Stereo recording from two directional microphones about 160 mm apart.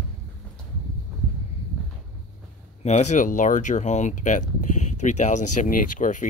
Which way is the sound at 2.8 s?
45° left (ahead or behind).